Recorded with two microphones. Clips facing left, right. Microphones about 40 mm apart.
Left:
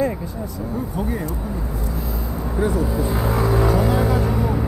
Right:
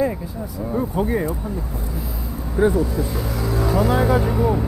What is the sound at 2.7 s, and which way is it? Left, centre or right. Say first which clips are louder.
Speech: even; centre.